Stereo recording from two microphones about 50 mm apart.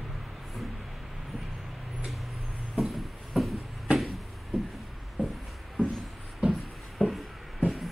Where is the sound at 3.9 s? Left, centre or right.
Right.